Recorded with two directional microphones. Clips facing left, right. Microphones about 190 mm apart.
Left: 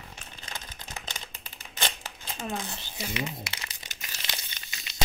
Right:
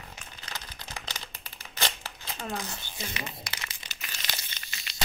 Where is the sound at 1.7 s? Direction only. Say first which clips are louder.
Even; 20° left (ahead or behind).